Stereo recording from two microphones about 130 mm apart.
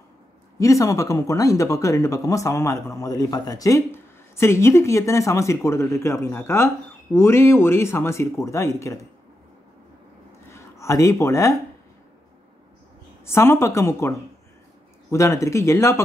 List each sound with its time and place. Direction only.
0.6 s speech: 25° left (ahead or behind)
10.5 s speech: 25° left (ahead or behind)
13.2 s speech: 20° left (ahead or behind)